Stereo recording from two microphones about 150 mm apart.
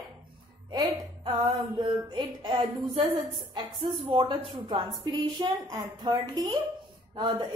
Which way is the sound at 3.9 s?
40° right (ahead or behind).